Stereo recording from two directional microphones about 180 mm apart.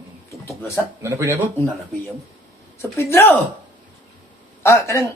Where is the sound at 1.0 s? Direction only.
15° right (ahead or behind).